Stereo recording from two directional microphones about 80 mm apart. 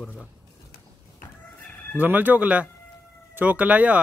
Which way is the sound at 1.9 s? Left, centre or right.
Right.